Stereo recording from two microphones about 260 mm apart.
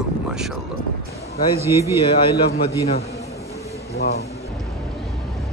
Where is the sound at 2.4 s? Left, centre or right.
Left.